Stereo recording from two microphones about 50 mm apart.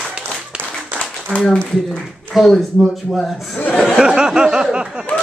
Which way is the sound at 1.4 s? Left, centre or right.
Centre.